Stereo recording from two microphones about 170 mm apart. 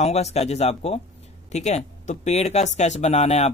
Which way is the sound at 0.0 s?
40° left (ahead or behind).